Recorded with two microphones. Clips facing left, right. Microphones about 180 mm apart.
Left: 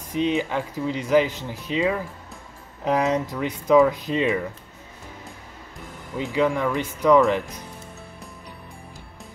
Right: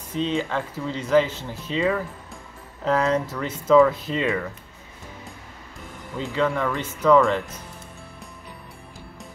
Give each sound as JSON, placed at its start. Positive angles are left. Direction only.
{"t": 0.1, "sound": "speech", "side_deg": 15}
{"t": 6.1, "sound": "speech", "side_deg": 15}